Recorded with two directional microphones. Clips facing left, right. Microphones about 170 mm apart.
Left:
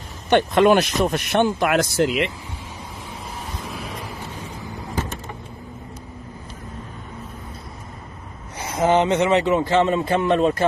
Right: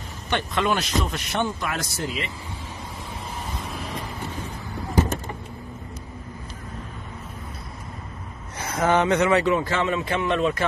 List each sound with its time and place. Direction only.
0.3 s speech: 55° left (ahead or behind); by 2.3 s 80° left
3.5 s vehicle: centre (ahead or behind)
8.5 s speech: 20° left (ahead or behind)
9.9 s speech: 35° left (ahead or behind)